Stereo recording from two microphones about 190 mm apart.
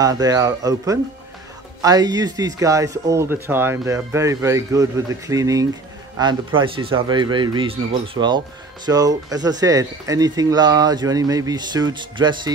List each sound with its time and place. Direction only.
0.0 s speech: 20° right (ahead or behind)